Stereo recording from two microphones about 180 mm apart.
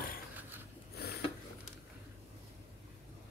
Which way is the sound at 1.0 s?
60° left (ahead or behind).